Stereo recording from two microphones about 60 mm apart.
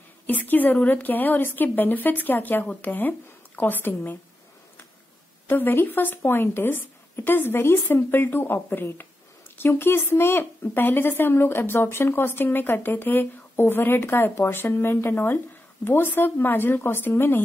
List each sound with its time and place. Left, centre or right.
0.3 s a woman's voice: left
5.5 s speech: left